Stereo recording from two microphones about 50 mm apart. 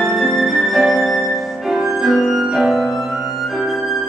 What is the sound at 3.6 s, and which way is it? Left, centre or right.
Flute, centre.